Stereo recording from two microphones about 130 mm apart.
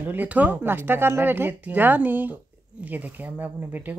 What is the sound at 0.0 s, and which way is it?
Speech, 15° right (ahead or behind).